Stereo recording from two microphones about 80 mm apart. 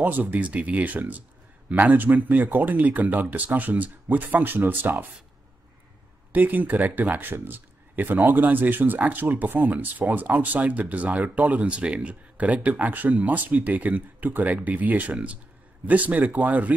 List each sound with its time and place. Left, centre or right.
0.0 s speech: right
6.3 s speech: right